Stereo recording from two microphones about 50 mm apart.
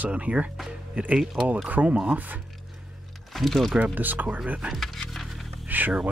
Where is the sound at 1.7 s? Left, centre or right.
Right.